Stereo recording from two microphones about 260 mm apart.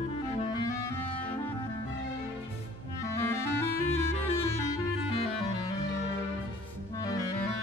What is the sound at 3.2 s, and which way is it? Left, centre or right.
Clarinet, centre.